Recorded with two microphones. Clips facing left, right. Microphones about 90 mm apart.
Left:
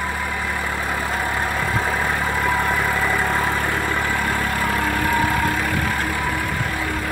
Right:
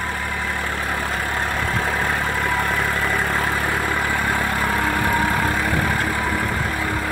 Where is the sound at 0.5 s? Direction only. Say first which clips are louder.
Even; 10° left (ahead or behind).